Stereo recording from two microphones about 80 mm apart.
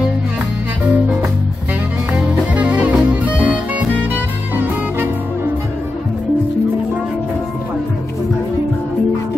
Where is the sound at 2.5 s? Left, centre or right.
Centre.